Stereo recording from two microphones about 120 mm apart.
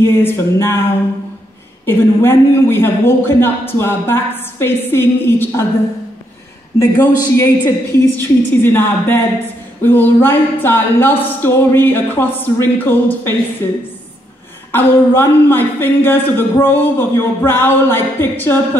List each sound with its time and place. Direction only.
0.0 s a man's voice: 20° left (ahead or behind)
1.9 s a man's voice: 20° left (ahead or behind)
6.8 s speech: 20° left (ahead or behind)
14.7 s speech: 20° left (ahead or behind)